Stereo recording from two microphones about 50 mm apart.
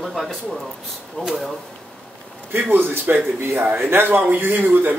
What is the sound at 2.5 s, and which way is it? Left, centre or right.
Speech, right.